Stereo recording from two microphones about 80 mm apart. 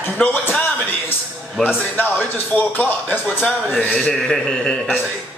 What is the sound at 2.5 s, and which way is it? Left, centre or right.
Speech, centre.